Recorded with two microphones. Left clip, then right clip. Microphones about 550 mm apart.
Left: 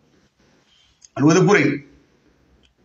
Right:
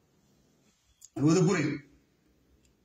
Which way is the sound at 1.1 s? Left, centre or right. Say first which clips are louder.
Left 12 dB; right.